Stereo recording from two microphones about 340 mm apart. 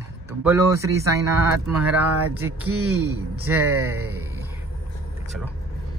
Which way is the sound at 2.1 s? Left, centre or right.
Right.